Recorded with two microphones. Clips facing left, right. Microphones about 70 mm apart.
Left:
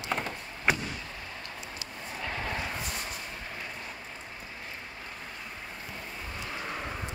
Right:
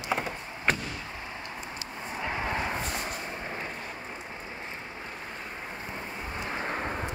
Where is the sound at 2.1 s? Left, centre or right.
Centre.